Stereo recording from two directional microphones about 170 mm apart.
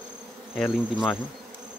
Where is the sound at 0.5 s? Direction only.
Centre (ahead or behind).